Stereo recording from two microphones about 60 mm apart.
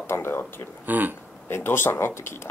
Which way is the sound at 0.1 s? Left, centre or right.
Left.